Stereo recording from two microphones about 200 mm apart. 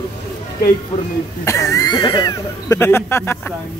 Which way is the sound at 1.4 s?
15° left (ahead or behind).